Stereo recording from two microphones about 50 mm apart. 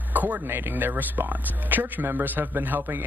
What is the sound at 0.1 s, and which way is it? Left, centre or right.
Speech, right.